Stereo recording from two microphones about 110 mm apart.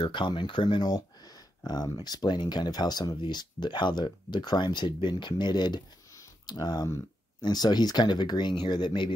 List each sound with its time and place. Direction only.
0.0 s speech: 45° left (ahead or behind)